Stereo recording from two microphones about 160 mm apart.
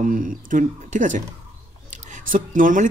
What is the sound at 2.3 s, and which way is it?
Speech, 55° right (ahead or behind).